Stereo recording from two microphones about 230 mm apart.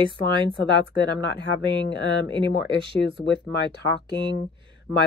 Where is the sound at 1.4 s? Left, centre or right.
Left.